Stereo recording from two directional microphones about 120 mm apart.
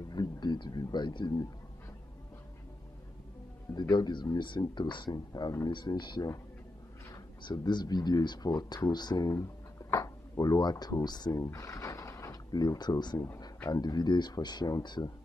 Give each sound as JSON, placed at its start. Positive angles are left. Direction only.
{"t": 0.1, "sound": "a sound", "side_deg": 35}
{"t": 3.9, "sound": "speech", "side_deg": 35}
{"t": 7.4, "sound": "speech", "side_deg": 35}